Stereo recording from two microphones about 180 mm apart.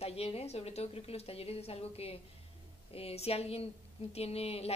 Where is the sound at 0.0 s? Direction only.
35° left (ahead or behind).